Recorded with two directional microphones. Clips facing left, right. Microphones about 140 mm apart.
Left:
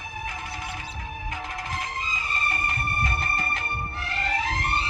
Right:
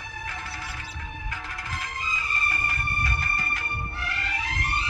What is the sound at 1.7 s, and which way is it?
Music, 20° left (ahead or behind).